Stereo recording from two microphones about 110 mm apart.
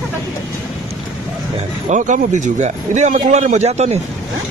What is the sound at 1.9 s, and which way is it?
Speech, 90° right.